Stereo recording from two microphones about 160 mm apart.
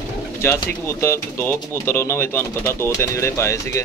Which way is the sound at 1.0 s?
15° left (ahead or behind).